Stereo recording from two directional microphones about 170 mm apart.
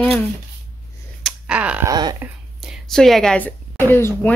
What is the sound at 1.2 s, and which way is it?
Clicking, 5° right (ahead or behind).